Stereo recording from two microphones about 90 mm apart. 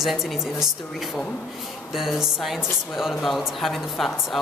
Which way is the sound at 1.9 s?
5° right (ahead or behind).